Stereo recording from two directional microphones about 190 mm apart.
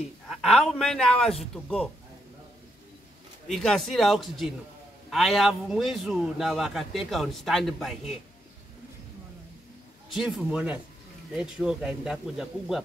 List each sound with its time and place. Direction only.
0.3 s a man's voice: centre (ahead or behind)
3.4 s a man's voice: centre (ahead or behind)
10.0 s a man's voice: centre (ahead or behind)